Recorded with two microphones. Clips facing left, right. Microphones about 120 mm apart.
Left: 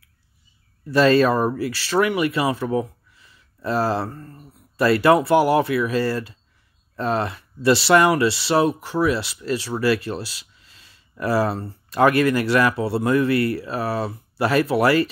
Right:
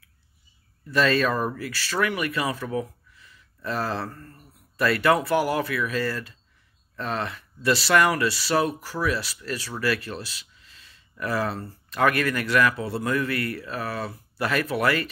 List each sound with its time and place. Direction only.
0.8 s speech: 30° left (ahead or behind)